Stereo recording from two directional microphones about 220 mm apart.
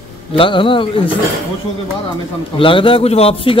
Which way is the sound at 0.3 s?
25° left (ahead or behind).